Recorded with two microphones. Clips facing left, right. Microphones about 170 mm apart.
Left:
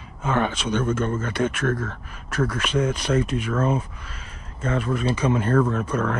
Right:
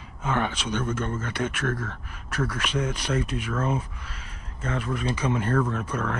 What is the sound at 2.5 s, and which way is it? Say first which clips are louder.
Speech: left 4 dB; 10° right (ahead or behind).